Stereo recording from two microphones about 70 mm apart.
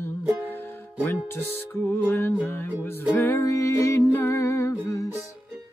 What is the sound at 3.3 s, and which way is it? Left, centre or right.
Music, left.